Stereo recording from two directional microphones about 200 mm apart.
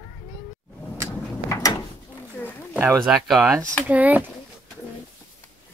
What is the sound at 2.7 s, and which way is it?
Speech, 10° right (ahead or behind).